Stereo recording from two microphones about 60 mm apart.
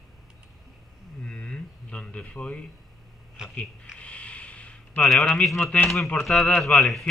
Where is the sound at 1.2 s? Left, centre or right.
Centre.